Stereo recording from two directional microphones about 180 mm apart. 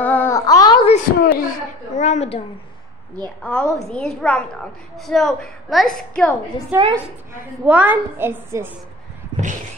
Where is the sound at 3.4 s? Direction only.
5° left (ahead or behind).